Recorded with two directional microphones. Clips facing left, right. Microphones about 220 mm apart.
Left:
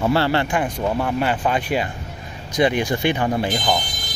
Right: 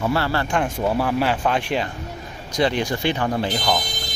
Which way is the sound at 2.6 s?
15° left (ahead or behind).